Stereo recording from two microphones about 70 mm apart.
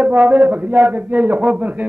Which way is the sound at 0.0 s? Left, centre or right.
Centre.